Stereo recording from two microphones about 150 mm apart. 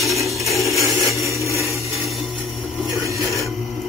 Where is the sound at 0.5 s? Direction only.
Centre (ahead or behind).